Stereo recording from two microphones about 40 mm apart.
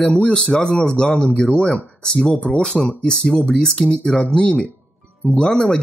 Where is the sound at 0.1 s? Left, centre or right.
Left.